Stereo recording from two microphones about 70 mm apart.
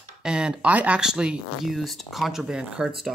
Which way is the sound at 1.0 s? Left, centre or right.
Centre.